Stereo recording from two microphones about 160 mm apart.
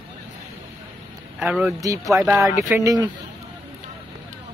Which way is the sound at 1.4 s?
5° right (ahead or behind).